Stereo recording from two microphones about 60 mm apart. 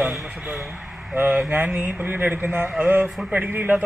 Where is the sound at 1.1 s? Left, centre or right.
Right.